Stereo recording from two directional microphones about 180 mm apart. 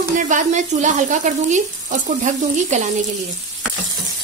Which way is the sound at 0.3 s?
45° right (ahead or behind).